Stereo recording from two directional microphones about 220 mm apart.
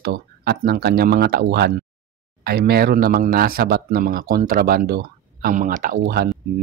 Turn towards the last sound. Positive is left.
turn(degrees=-45)  # may be behind; listen again after turning